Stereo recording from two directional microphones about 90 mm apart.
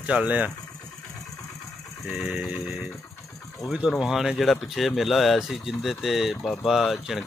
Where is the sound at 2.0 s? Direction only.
5° right (ahead or behind).